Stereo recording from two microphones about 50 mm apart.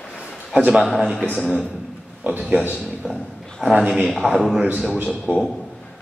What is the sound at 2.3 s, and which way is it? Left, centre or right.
Speech, right.